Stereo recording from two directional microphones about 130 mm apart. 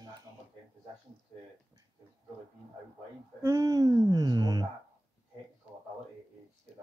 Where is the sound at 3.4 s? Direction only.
25° right (ahead or behind).